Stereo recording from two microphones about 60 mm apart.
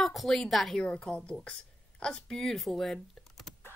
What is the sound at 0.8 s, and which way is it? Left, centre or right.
Speech, centre.